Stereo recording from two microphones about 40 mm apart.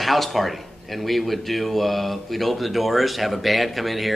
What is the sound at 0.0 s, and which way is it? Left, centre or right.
A man's voice, centre.